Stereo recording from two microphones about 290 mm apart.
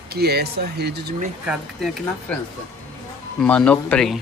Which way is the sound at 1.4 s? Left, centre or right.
Centre.